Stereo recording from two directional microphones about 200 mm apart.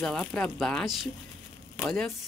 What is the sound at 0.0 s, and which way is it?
Speech, 5° left (ahead or behind).